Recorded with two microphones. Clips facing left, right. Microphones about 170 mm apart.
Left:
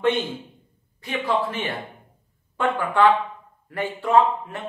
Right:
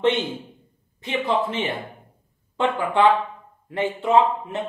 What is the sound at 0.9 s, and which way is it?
Speech, 20° right (ahead or behind).